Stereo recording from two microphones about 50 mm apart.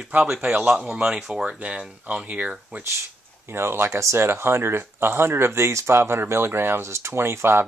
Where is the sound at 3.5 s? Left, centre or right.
Right.